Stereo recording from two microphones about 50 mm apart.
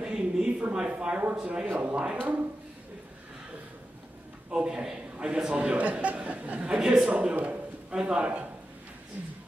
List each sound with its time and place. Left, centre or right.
0.0 s a sound: centre
0.9 s a man's voice: right
1.8 s a man's voice: right
4.5 s a man's voice: centre
5.1 s a sound: right
5.5 s a man's voice: right
6.8 s a man's voice: centre
7.1 s a man's voice: right